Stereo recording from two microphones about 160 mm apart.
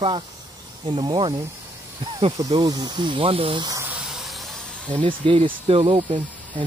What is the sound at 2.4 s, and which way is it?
Speech, 25° right (ahead or behind).